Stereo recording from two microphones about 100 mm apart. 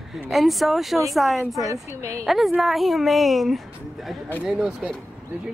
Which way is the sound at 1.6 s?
35° right (ahead or behind).